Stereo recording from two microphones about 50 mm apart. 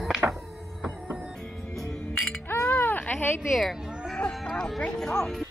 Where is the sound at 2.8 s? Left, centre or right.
Left.